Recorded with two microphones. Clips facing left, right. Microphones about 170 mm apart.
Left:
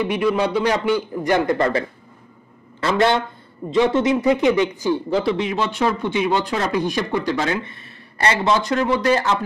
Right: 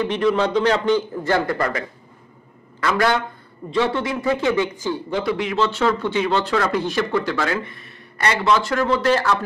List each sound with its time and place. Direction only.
0.0 s a man's voice: 10° left (ahead or behind)